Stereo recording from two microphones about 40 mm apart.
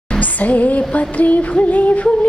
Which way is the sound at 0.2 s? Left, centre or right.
Left.